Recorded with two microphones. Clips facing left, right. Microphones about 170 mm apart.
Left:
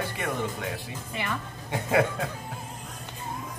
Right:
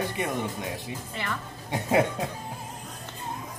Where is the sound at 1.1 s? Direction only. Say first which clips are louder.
Left 3 dB; 15° left (ahead or behind).